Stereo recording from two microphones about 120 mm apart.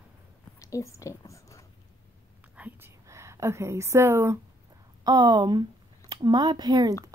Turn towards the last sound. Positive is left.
turn(degrees=-35)  # may be behind; listen again after turning